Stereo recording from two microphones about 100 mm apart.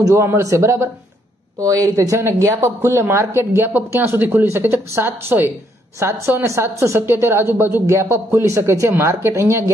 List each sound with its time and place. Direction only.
0.0 s speech: 25° right (ahead or behind)